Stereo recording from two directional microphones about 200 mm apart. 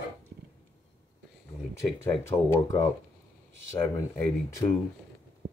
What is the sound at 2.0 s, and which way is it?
Speech, 15° left (ahead or behind).